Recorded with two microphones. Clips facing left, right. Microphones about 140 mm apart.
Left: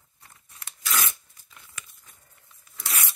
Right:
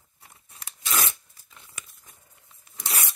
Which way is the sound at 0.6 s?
25° right (ahead or behind).